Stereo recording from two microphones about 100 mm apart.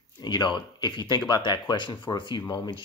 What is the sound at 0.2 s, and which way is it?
Speech, 50° left (ahead or behind).